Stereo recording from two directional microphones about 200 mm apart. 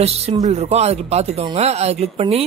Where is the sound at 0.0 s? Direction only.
30° right (ahead or behind).